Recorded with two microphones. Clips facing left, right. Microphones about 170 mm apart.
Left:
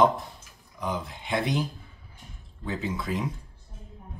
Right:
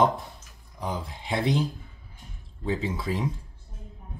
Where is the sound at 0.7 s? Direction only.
30° right (ahead or behind).